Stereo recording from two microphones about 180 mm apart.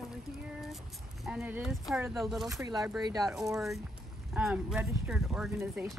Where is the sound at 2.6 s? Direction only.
20° right (ahead or behind).